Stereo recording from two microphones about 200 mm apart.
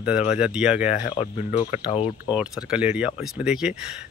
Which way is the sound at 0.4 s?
5° right (ahead or behind).